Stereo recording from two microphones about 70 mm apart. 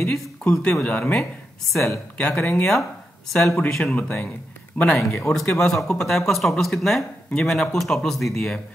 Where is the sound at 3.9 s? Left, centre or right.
Left.